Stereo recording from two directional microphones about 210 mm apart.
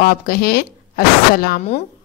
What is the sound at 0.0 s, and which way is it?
Speech, 45° left (ahead or behind).